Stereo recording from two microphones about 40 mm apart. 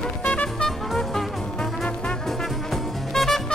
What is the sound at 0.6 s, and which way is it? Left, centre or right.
Music, centre.